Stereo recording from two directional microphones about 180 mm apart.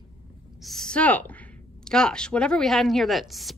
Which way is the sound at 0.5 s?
Centre (ahead or behind).